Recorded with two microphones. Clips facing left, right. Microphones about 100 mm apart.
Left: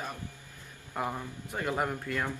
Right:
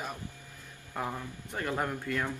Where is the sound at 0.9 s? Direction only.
15° left (ahead or behind).